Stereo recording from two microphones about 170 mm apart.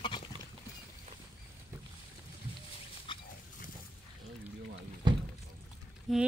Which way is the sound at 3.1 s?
30° left (ahead or behind).